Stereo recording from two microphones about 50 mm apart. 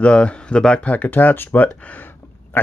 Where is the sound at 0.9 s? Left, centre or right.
Left.